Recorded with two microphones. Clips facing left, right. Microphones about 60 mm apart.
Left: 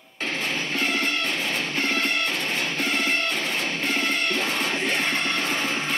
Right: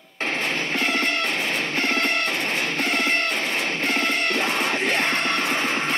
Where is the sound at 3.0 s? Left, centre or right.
Right.